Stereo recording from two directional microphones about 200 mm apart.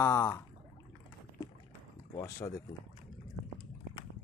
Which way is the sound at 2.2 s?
15° left (ahead or behind).